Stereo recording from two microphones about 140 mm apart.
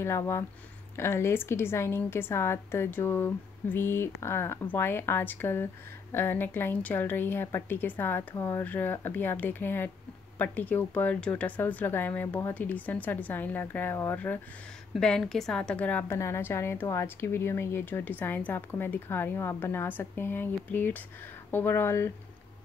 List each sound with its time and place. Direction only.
0.0 s a woman's voice: 20° left (ahead or behind)